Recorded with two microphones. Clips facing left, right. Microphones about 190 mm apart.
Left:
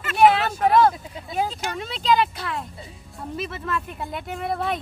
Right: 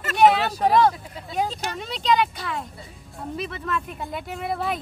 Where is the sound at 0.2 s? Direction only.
Centre (ahead or behind).